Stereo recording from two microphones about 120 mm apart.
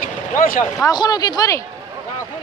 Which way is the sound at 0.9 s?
35° left (ahead or behind).